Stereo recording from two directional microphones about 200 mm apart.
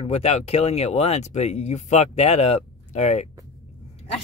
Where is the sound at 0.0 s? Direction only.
30° left (ahead or behind).